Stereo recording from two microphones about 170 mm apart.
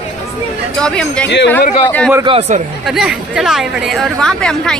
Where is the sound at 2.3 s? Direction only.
40° right (ahead or behind).